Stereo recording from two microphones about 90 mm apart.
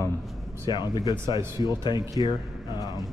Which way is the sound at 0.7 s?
50° left (ahead or behind).